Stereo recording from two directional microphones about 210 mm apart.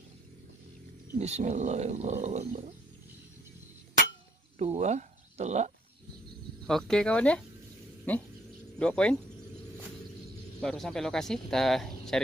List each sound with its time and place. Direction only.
1.1 s speech: 30° right (ahead or behind)
4.6 s speech: 30° right (ahead or behind)
6.7 s speech: 5° left (ahead or behind)
10.6 s speech: 5° left (ahead or behind)